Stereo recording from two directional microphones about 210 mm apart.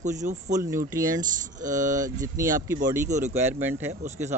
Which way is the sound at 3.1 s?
35° right (ahead or behind).